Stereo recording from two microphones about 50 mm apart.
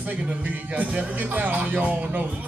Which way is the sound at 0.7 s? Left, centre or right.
Right.